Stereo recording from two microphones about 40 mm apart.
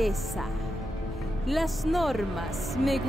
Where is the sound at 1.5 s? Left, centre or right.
Centre.